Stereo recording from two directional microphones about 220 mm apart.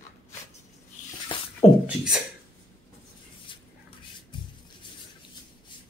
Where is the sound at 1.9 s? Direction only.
5° right (ahead or behind).